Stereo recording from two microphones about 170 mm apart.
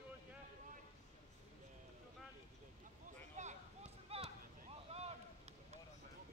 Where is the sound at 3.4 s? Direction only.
45° right (ahead or behind).